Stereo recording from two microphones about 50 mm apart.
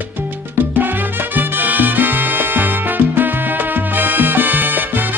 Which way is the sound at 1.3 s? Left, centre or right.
Right.